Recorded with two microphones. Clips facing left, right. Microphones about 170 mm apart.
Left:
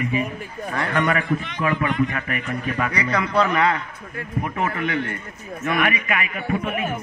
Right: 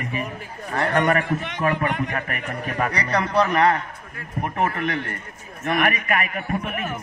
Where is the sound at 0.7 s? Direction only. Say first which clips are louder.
Right 2 dB; 45° right (ahead or behind).